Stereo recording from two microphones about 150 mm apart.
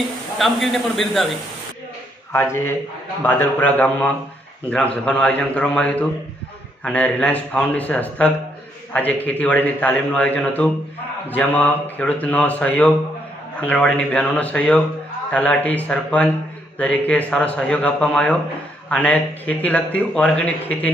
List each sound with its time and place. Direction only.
0.4 s a man's voice: centre (ahead or behind)
2.3 s a man's voice: 15° left (ahead or behind)